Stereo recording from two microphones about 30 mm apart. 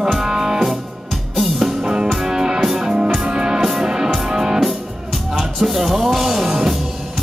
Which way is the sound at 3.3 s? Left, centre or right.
Right.